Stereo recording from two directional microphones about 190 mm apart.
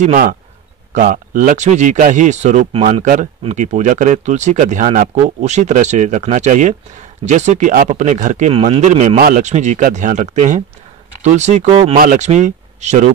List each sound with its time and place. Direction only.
0.0 s a man's voice: 45° right (ahead or behind)